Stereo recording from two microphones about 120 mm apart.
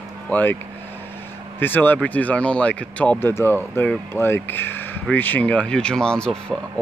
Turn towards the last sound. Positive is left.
turn(degrees=5)  # may be behind; listen again after turning